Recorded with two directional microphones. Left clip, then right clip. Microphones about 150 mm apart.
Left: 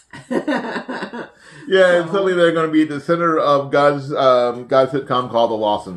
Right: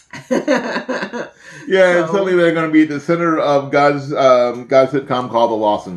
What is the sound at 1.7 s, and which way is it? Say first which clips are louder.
Speech: right 1 dB; 15° left (ahead or behind).